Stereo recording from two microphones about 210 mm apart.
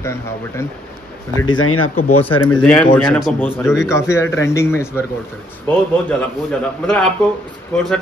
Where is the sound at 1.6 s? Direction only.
90° left.